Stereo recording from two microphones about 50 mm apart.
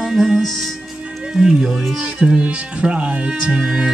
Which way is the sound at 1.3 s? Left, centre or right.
Centre.